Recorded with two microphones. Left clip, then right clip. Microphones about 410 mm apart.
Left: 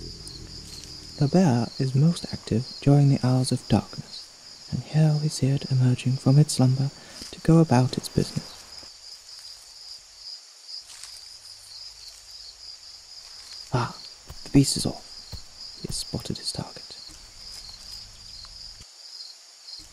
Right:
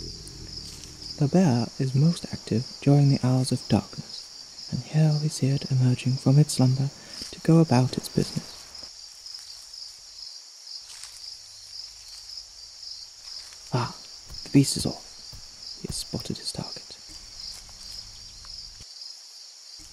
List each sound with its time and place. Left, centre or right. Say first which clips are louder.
1.2 s speech: left 1 dB; centre
4.9 s speech: left 1 dB; centre
13.7 s a sound: left 1 dB; centre
14.4 s speech: left 1 dB; centre
15.9 s speech: left 1 dB; centre